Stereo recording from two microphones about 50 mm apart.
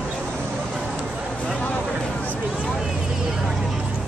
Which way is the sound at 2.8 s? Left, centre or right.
Centre.